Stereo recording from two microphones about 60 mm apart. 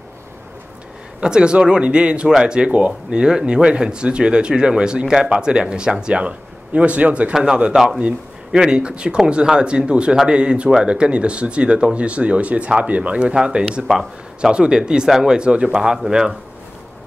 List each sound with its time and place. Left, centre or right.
1.2 s speech: centre
13.8 s a man's voice: centre